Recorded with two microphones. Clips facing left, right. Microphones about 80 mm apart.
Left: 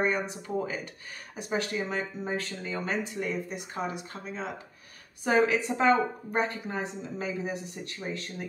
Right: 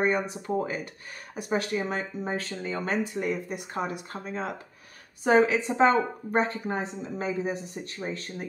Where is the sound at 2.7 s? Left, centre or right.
Right.